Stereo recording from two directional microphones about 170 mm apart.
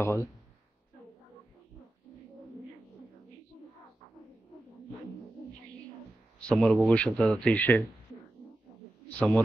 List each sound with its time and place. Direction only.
0.0 s speech: 15° left (ahead or behind)
6.4 s speech: 5° left (ahead or behind)
9.1 s speech: 10° left (ahead or behind)